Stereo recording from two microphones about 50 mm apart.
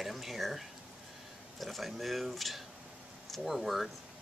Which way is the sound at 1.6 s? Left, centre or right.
Centre.